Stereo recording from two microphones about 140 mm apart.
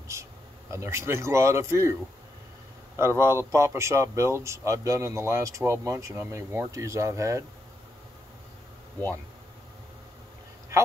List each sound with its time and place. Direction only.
0.1 s speech: 20° right (ahead or behind)
3.0 s speech: 20° right (ahead or behind)